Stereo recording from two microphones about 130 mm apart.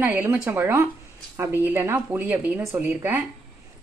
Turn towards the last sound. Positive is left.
turn(degrees=-15)  # may be behind; listen again after turning